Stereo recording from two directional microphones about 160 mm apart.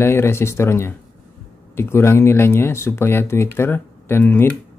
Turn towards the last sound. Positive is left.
turn(degrees=15)  # may be behind; listen again after turning